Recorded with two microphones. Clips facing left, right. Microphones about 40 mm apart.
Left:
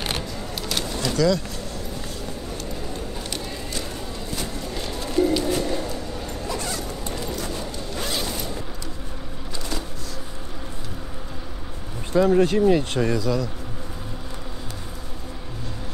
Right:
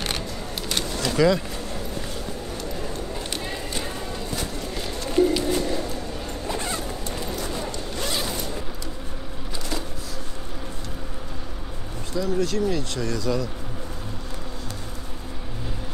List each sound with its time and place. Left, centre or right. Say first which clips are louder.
0.6 s bird: even; centre
1.1 s speech: right 1 dB; right
4.7 s bird: left 1 dB; centre
5.2 s a sound: even; centre
5.9 s zipper: left 1 dB; right
7.2 s clip-clop: even; centre
7.9 s zipper: left 1 dB; centre
12.1 s speech: left 7 dB; left
13.2 s speech: left 1 dB; centre